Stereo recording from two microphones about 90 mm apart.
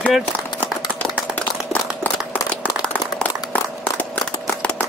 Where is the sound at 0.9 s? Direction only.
15° left (ahead or behind).